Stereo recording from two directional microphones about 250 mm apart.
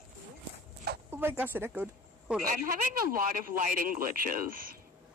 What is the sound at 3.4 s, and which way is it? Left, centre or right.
Speech, right.